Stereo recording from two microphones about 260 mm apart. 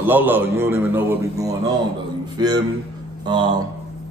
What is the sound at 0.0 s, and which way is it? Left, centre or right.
A man's voice, centre.